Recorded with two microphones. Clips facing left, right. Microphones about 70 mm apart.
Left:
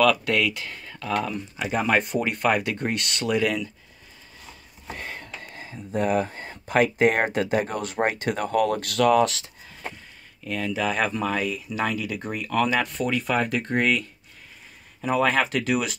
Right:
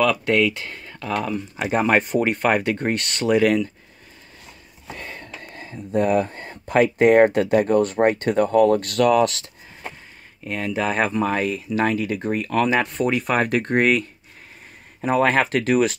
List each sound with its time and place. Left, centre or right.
0.0 s speech: right
5.0 s a sound: right
6.3 s speech: right
10.4 s speech: right
11.4 s speech: right
12.9 s rub: right
15.0 s speech: right